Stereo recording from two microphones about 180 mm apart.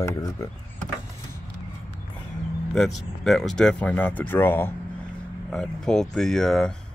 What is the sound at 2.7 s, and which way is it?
Speech, centre (ahead or behind).